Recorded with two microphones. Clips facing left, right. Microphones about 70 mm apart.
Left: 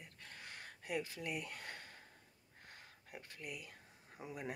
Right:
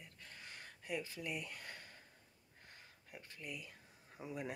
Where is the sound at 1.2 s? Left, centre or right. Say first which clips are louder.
Left 1 dB; left.